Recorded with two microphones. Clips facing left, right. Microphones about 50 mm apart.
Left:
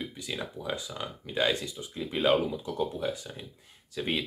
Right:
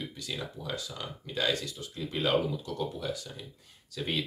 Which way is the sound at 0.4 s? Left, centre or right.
Left.